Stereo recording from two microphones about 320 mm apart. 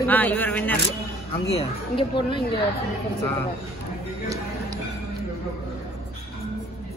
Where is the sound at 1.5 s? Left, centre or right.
Centre.